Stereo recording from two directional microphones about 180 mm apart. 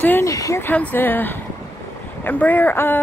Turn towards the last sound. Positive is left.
turn(degrees=10)  # may be behind; listen again after turning